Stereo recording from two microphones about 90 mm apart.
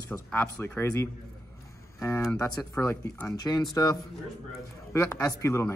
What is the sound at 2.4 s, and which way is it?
Speech, 30° left (ahead or behind).